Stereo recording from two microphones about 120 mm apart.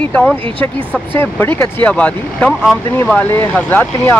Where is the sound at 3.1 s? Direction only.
15° left (ahead or behind).